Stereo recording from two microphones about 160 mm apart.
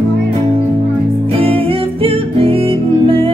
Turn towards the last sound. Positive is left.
turn(degrees=-35)  # may be behind; listen again after turning